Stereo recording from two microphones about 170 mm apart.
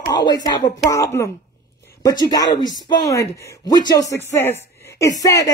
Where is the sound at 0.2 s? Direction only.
25° left (ahead or behind).